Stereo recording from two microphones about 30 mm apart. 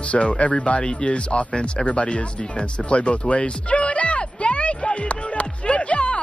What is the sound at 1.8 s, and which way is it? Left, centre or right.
Speech, left.